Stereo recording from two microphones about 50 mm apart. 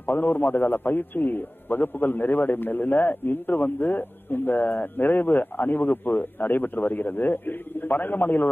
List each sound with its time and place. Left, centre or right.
0.0 s a man's voice: left